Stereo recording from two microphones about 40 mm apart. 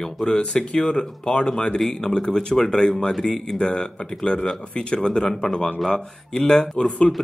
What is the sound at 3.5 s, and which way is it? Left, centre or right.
Speech, left.